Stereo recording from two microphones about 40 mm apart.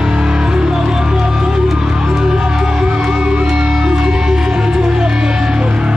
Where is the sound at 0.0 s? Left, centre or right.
Centre.